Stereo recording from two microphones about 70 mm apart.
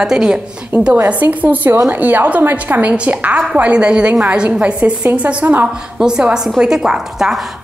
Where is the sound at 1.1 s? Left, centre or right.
Right.